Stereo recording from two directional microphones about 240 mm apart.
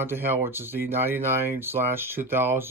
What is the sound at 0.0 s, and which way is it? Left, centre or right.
Speech, centre.